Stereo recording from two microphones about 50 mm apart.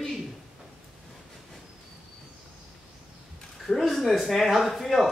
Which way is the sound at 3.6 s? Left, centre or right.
Centre.